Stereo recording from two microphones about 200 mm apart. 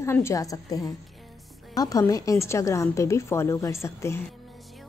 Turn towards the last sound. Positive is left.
turn(degrees=15)  # may be behind; listen again after turning